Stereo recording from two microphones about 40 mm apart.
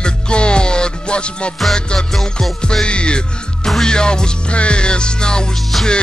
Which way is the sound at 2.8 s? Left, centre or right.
Left.